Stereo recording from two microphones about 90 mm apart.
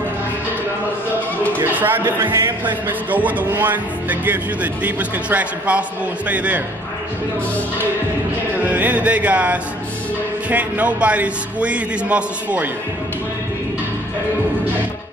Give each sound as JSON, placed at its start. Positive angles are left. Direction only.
{"t": 1.6, "sound": "a man's voice", "side_deg": -20}
{"t": 8.6, "sound": "a man's voice", "side_deg": -20}